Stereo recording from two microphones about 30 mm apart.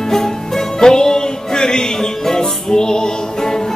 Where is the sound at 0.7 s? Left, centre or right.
Left.